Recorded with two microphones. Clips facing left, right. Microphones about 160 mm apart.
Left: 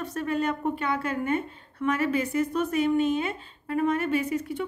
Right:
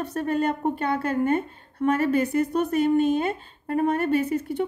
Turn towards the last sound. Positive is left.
turn(degrees=-40)  # may be behind; listen again after turning